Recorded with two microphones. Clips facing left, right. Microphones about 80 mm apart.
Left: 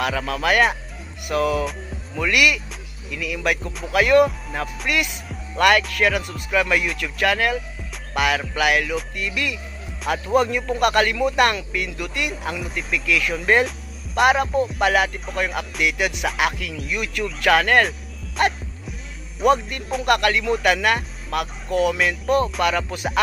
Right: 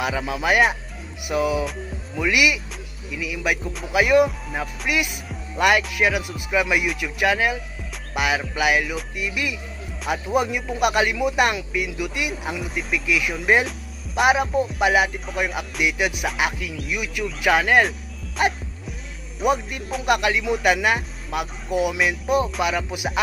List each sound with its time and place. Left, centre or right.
0.0 s speech: centre